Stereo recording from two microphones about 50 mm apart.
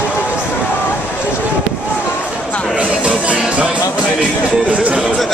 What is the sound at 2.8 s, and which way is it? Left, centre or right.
Music, right.